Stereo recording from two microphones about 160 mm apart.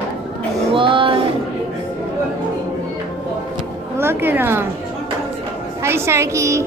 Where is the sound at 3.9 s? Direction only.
15° right (ahead or behind).